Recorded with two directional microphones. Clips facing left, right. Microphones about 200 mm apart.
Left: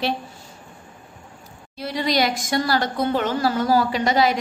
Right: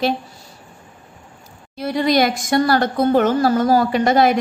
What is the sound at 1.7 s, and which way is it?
A woman's voice, 50° right (ahead or behind).